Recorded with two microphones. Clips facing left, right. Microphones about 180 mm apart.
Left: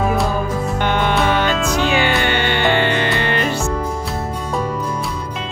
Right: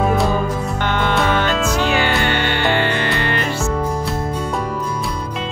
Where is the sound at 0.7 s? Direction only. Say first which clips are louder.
Left 1 dB; 15° left (ahead or behind).